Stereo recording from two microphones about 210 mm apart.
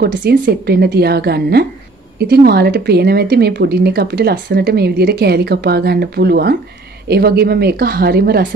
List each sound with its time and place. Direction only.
0.0 s speech: 50° right (ahead or behind)